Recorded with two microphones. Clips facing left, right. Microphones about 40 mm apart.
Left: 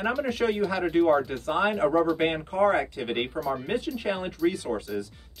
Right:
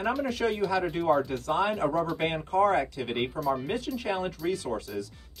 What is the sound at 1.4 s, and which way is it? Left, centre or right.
Speech, left.